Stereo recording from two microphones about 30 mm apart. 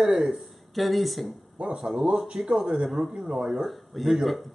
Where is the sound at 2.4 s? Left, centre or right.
Right.